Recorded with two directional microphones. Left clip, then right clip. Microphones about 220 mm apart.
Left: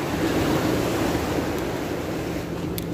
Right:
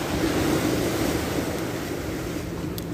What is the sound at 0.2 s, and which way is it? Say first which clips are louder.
Vehicle: left 1 dB; 35° right (ahead or behind).